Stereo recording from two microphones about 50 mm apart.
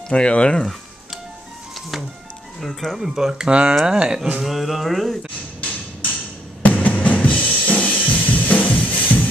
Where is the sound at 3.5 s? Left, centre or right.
Right.